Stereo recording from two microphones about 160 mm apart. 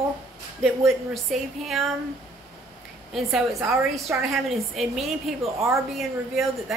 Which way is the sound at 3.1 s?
Centre (ahead or behind).